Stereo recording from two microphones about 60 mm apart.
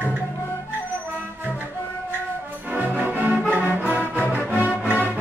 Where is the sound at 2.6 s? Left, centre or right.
Right.